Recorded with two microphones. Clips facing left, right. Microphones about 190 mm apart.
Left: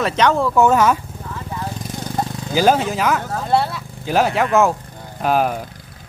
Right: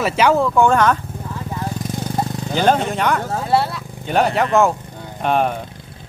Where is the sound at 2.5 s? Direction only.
5° left (ahead or behind).